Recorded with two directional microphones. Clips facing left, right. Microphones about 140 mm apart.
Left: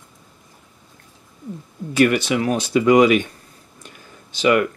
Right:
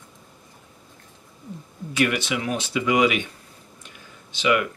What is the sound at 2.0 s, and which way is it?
Speech, 40° left (ahead or behind).